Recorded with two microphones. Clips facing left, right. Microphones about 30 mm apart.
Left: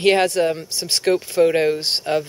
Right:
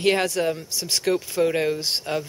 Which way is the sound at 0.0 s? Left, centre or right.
Left.